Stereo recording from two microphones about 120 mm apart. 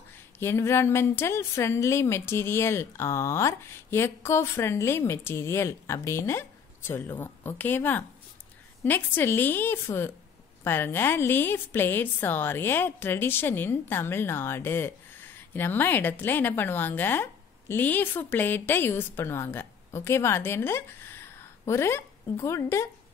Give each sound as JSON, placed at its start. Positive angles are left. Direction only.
{"t": 0.4, "sound": "a woman's voice", "side_deg": 20}